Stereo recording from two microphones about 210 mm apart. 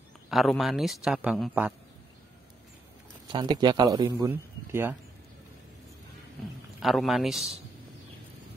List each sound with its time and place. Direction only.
0.3 s a man's voice: centre (ahead or behind)
3.3 s a man's voice: 20° right (ahead or behind)
6.8 s a man's voice: centre (ahead or behind)